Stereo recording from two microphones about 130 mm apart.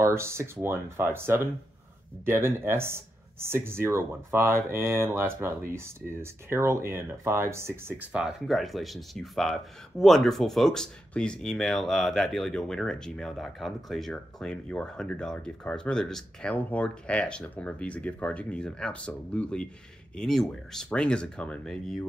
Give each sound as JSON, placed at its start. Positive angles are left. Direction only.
{"t": 0.0, "sound": "speech", "side_deg": -20}